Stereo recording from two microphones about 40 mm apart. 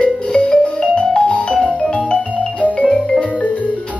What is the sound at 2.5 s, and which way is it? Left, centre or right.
Music, left.